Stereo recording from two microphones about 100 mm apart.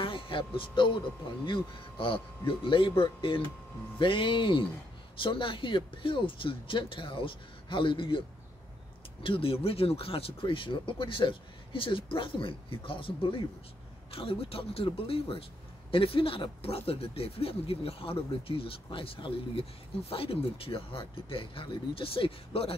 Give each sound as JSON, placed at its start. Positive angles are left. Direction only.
{"t": 0.0, "sound": "a man's voice", "side_deg": 60}
{"t": 9.2, "sound": "speech", "side_deg": 65}